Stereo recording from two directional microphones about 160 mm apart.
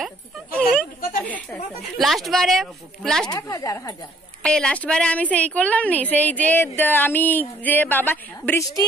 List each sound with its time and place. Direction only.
0.0 s speech: 5° left (ahead or behind)
3.3 s speech: 20° left (ahead or behind)
4.4 s a woman's voice: 5° left (ahead or behind)